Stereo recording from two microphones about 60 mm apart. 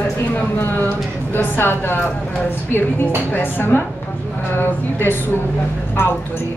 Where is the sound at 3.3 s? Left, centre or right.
Left.